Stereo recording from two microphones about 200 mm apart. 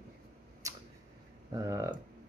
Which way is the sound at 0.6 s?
15° right (ahead or behind).